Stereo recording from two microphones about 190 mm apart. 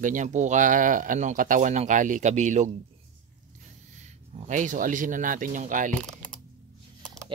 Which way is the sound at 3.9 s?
40° right (ahead or behind).